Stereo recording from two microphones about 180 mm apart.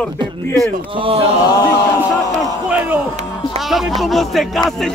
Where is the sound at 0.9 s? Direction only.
30° right (ahead or behind).